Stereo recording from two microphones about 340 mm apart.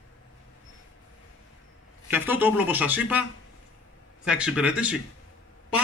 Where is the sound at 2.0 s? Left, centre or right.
Centre.